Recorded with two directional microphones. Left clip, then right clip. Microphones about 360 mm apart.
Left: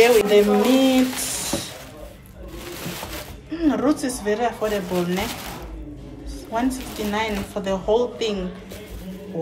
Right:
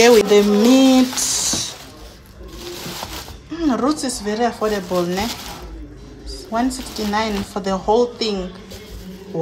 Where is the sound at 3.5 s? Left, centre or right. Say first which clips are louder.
Right 1 dB; centre.